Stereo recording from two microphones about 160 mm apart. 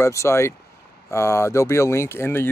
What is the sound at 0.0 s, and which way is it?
Speech, 15° left (ahead or behind).